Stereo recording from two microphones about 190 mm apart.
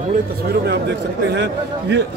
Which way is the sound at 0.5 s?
60° right (ahead or behind).